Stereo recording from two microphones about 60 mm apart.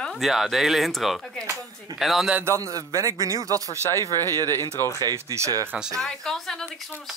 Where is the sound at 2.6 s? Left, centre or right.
Right.